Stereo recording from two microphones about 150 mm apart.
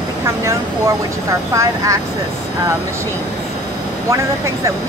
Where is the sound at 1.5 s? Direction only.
20° right (ahead or behind).